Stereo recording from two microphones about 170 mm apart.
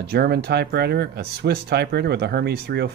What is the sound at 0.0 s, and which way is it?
Speech, 70° right (ahead or behind).